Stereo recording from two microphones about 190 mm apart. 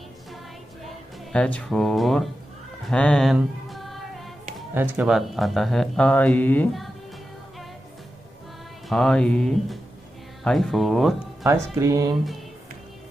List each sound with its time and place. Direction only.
0.8 s speech: 5° left (ahead or behind)
2.9 s music: 5° left (ahead or behind)
4.7 s speech: 5° right (ahead or behind)
8.8 s speech: centre (ahead or behind)
11.4 s speech: 15° right (ahead or behind)